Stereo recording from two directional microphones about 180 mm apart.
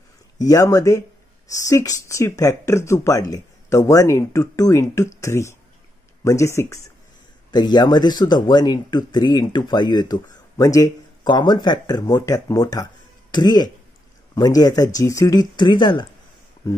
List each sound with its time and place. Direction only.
0.4 s speech: 20° left (ahead or behind)